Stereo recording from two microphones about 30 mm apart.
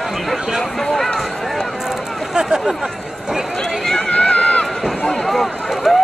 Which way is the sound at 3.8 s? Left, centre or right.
Left.